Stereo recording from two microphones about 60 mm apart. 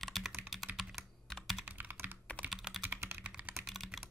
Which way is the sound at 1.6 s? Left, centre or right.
Right.